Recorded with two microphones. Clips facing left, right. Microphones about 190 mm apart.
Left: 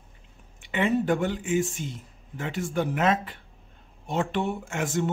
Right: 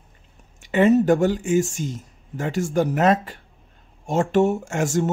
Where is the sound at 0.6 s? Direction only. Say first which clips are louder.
Right 8 dB; 40° right (ahead or behind).